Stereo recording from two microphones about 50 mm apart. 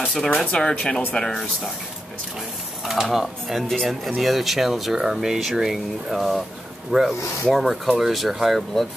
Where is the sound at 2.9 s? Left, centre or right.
Centre.